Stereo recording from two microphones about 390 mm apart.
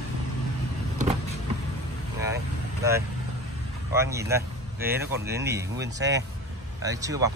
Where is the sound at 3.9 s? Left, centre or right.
Centre.